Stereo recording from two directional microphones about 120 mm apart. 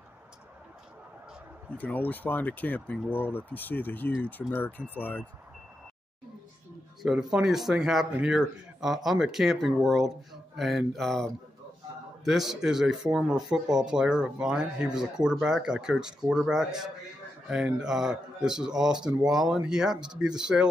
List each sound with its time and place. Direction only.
1.8 s speech: 15° left (ahead or behind)
7.0 s speech: 5° right (ahead or behind)
12.3 s speech: centre (ahead or behind)